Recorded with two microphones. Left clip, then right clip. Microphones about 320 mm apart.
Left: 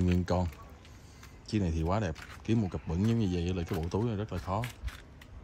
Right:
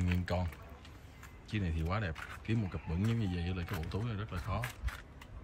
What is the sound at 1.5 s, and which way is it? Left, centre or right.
Speech, centre.